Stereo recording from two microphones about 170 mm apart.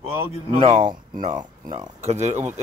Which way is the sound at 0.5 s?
35° right (ahead or behind).